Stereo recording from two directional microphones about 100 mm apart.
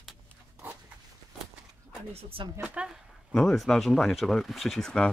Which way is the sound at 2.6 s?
15° right (ahead or behind).